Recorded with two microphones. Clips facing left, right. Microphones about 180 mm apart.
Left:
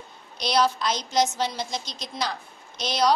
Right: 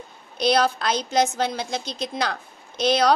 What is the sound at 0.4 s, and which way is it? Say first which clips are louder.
A woman's voice: right 3 dB; 55° right (ahead or behind).